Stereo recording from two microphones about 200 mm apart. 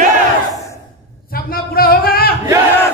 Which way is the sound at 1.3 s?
50° left (ahead or behind).